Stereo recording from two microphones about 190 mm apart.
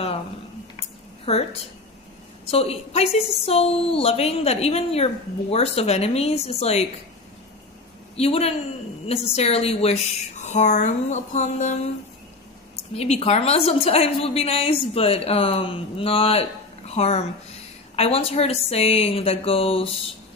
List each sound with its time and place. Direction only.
1.2 s a woman's voice: 30° left (ahead or behind)
8.2 s a woman's voice: 30° left (ahead or behind)
12.9 s a woman's voice: 30° left (ahead or behind)